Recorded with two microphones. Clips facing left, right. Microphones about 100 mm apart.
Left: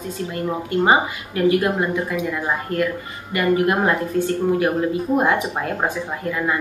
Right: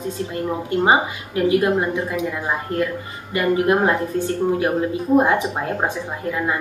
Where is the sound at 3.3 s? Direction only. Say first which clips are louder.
Right 1 dB; 25° right (ahead or behind).